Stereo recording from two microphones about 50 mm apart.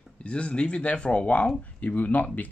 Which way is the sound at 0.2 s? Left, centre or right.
Left.